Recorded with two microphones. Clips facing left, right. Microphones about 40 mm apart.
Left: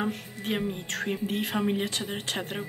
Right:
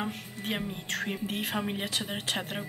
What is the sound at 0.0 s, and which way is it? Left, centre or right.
A woman's voice, centre.